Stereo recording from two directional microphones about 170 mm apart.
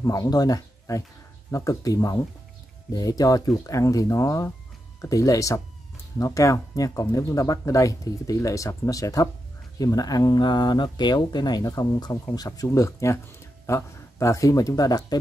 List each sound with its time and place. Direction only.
0.0 s speech: 20° left (ahead or behind)